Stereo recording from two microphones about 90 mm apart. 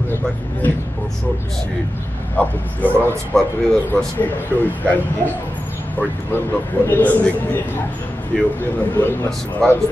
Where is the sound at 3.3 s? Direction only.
5° left (ahead or behind).